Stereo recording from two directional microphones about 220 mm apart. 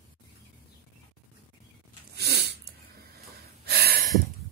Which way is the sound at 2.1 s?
50° right (ahead or behind).